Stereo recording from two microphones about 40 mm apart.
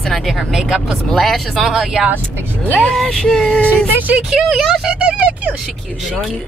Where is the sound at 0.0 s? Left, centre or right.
Centre.